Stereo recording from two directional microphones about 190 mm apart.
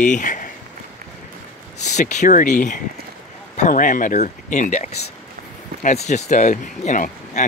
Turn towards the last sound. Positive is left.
turn(degrees=40)  # may be behind; listen again after turning